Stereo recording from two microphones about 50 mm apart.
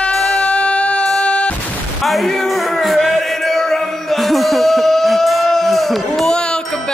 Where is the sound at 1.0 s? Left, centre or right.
Centre.